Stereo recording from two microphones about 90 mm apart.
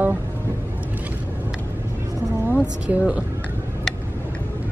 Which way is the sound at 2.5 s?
10° right (ahead or behind).